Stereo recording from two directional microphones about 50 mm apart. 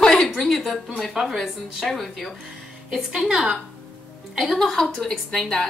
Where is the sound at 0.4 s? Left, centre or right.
Centre.